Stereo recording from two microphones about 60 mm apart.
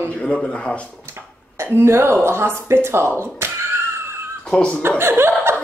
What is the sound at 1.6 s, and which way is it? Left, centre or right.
Speech, right.